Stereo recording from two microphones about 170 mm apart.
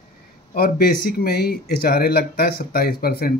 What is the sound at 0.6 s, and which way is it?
Speech, 60° left (ahead or behind).